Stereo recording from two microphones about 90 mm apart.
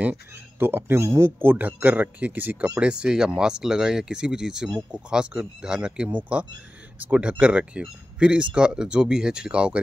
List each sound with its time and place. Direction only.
0.0 s speech: 20° right (ahead or behind)